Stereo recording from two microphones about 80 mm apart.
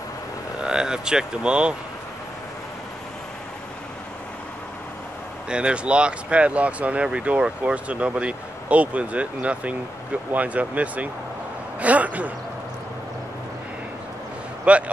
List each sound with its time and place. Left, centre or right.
0.6 s speech: centre
5.5 s speech: centre
11.8 s a sound: centre
14.6 s speech: centre